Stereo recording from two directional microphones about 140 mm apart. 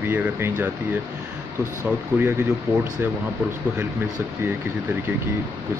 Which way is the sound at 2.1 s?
15° right (ahead or behind).